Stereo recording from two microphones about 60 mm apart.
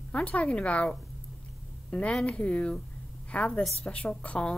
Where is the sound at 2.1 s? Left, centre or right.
Centre.